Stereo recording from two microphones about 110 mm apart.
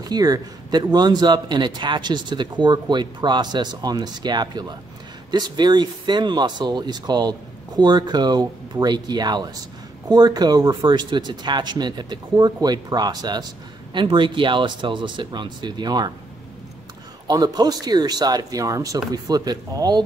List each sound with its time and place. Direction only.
0.0 s a man's voice: 35° right (ahead or behind)
13.9 s speech: 50° right (ahead or behind)
17.3 s a man's voice: 35° right (ahead or behind)